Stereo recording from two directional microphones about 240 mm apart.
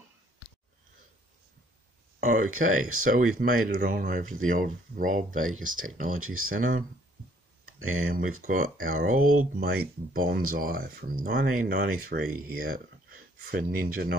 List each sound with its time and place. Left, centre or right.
2.1 s speech: right
2.5 s speech: right
3.0 s speech: right
6.1 s speech: right
6.5 s speech: right
8.4 s speech: right